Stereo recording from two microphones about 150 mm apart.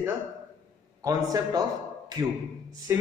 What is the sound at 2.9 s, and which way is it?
Speech, 15° right (ahead or behind).